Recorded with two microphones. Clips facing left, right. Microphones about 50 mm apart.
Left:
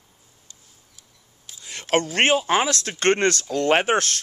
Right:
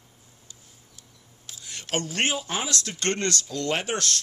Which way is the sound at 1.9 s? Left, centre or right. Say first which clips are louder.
Left 8 dB; left.